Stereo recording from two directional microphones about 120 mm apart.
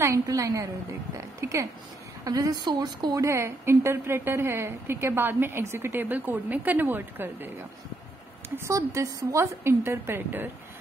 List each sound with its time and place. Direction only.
0.0 s a woman's voice: 25° right (ahead or behind)
8.5 s a woman's voice: 25° right (ahead or behind)